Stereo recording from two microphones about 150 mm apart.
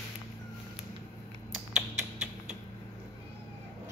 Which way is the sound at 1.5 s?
5° right (ahead or behind).